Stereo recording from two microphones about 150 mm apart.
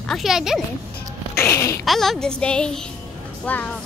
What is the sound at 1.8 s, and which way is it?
A child's voice, centre (ahead or behind).